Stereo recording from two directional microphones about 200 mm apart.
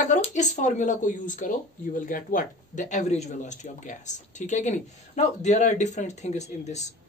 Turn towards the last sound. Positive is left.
turn(degrees=35)  # may be behind; listen again after turning